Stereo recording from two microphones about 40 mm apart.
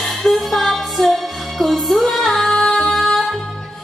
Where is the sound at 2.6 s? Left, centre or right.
Centre.